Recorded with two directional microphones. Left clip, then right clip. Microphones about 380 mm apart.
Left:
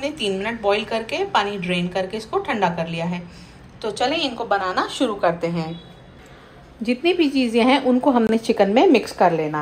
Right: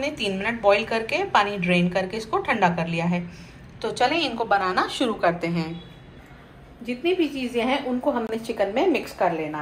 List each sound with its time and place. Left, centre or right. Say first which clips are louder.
0.0 s a woman's voice: left 2 dB; centre
6.8 s a woman's voice: left 5 dB; left